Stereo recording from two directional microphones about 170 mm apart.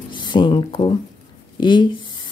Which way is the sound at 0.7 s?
30° left (ahead or behind).